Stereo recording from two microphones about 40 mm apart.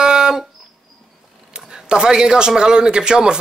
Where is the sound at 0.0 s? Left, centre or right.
Centre.